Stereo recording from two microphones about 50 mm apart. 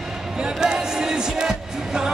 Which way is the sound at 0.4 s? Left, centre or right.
Centre.